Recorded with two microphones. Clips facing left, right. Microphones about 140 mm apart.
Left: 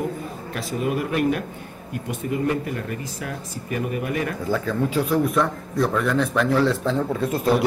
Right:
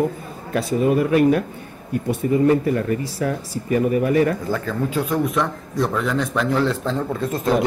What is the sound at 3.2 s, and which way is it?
Speech, 35° right (ahead or behind).